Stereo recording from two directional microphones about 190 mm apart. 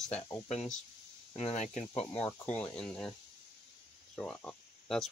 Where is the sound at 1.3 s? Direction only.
40° left (ahead or behind).